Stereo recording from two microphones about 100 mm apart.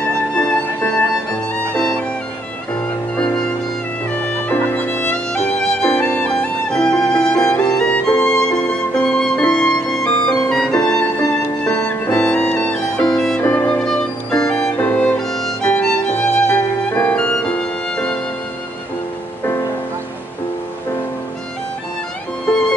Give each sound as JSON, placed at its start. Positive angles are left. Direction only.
{"t": 0.3, "sound": "music", "side_deg": 15}
{"t": 5.1, "sound": "music", "side_deg": 10}
{"t": 10.8, "sound": "music", "side_deg": 30}
{"t": 11.6, "sound": "music", "side_deg": 10}
{"t": 13.4, "sound": "music", "side_deg": 20}
{"t": 13.8, "sound": "music", "side_deg": 5}
{"t": 16.4, "sound": "music", "side_deg": 25}
{"t": 17.1, "sound": "music", "side_deg": 15}